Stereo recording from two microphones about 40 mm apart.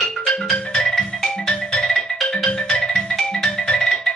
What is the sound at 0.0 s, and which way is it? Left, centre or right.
Music, centre.